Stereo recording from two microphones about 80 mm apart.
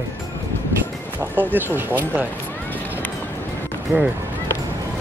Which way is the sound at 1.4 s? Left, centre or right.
Right.